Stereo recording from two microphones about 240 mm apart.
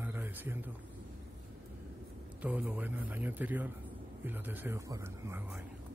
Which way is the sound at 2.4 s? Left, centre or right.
Centre.